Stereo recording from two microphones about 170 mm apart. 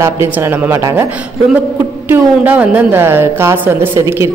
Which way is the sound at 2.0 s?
10° right (ahead or behind).